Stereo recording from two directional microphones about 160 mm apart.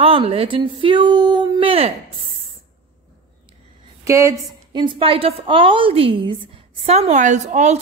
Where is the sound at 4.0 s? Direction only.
15° right (ahead or behind).